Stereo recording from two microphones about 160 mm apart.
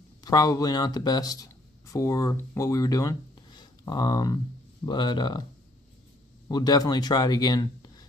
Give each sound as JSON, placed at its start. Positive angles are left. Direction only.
{"t": 0.2, "sound": "speech", "side_deg": 25}
{"t": 6.5, "sound": "speech", "side_deg": 25}